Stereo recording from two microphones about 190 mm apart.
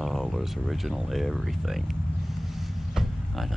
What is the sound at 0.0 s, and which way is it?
Speech, centre (ahead or behind).